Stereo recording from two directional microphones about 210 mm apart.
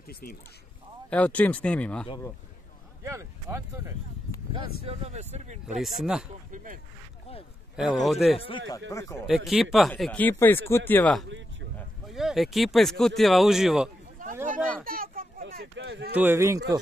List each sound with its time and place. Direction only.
0.0 s speech: 45° left (ahead or behind)
1.1 s speech: 5° left (ahead or behind)
3.0 s a sound: 15° right (ahead or behind)
4.8 s speech: 30° right (ahead or behind)
5.8 s speech: centre (ahead or behind)
6.5 s speech: 40° right (ahead or behind)
7.7 s speech: centre (ahead or behind)
8.4 s speech: 25° left (ahead or behind)
9.3 s speech: centre (ahead or behind)
14.2 s a sound: 40° right (ahead or behind)
15.5 s speech: 55° right (ahead or behind)
16.2 s a man's voice: 10° right (ahead or behind)